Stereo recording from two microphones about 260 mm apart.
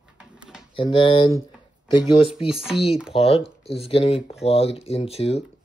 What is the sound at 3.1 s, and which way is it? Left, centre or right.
Speech, left.